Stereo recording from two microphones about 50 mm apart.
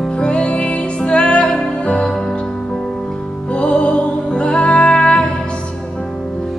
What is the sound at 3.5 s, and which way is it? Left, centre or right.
Music, left.